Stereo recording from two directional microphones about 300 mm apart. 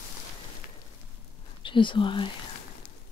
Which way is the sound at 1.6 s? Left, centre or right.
Centre.